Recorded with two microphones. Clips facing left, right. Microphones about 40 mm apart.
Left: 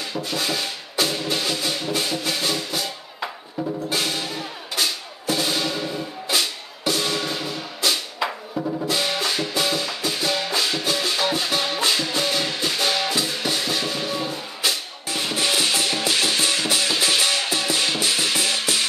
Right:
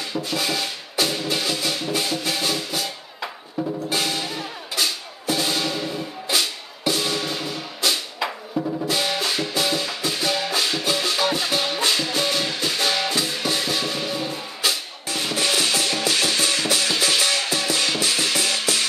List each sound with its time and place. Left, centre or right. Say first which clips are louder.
0.1 s music: right 1 dB; centre
15.5 s music: even; left